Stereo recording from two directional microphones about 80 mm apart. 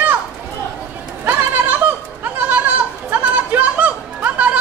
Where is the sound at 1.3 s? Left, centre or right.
Right.